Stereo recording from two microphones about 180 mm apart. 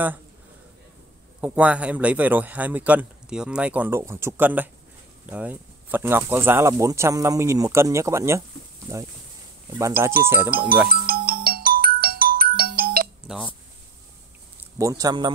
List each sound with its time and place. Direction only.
1.4 s speech: 10° right (ahead or behind)
10.9 s ringtone: 55° right (ahead or behind)
14.8 s speech: 20° right (ahead or behind)